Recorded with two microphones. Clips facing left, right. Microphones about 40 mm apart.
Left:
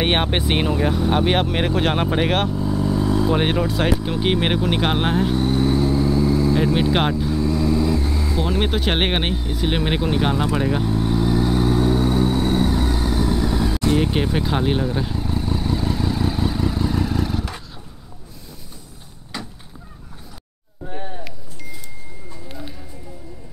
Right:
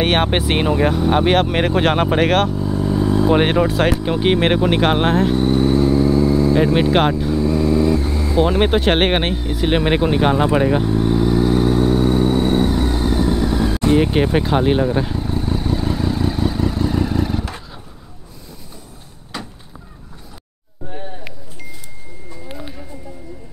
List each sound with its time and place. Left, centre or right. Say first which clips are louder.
0.2 s speech: right 3 dB; centre
2.3 s vehicle: right 3 dB; centre
3.3 s speech: right 5 dB; right; by 8.4 s centre
8.4 s vehicle: right 8 dB; centre
19.3 s a sound: right 2 dB; centre
22.5 s a sound: right 3 dB; centre